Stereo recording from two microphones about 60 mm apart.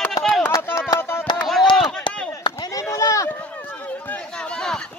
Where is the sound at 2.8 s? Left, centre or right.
Left.